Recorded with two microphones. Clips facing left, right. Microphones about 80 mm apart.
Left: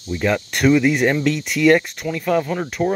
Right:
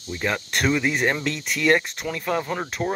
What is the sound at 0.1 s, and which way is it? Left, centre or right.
Speech, centre.